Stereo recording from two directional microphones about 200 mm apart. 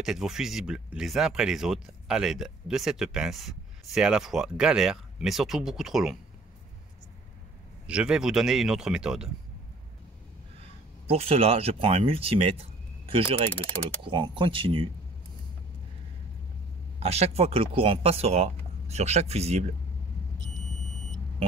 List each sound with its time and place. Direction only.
0.0 s speech: centre (ahead or behind)
7.8 s speech: 5° right (ahead or behind)
10.6 s speech: 30° right (ahead or behind)
13.5 s speech: 10° left (ahead or behind)
13.8 s speech: 25° right (ahead or behind)
17.0 s speech: 30° right (ahead or behind)